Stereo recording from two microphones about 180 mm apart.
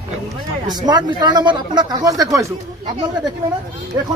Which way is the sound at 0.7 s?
25° right (ahead or behind).